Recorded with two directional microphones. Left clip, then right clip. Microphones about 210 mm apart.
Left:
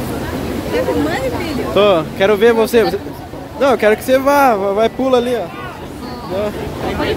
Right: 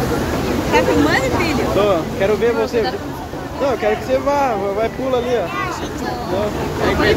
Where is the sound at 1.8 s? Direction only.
55° left (ahead or behind).